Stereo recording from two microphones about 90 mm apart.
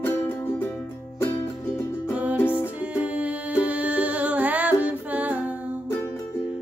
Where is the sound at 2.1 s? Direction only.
15° right (ahead or behind).